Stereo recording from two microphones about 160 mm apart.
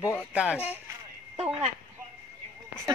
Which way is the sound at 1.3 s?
35° right (ahead or behind).